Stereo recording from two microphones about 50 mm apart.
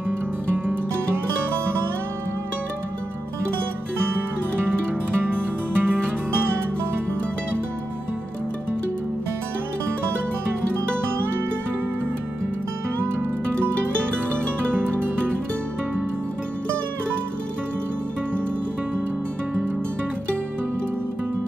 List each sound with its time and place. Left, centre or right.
4.6 s music: right